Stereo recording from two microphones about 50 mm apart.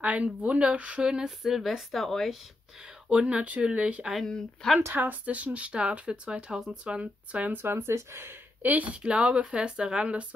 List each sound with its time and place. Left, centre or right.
0.0 s speech: right
1.4 s speech: centre
3.1 s speech: right
7.5 s speech: right
7.9 s speech: right
8.6 s speech: right
8.9 s speech: right